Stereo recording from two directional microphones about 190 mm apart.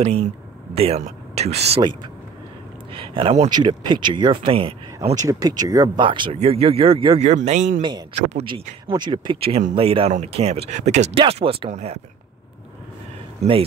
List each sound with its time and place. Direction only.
0.0 s speech: 35° right (ahead or behind)
2.9 s speech: 30° right (ahead or behind)
13.4 s speech: 30° right (ahead or behind)